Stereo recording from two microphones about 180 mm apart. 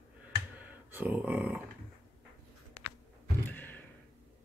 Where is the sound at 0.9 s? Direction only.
10° right (ahead or behind).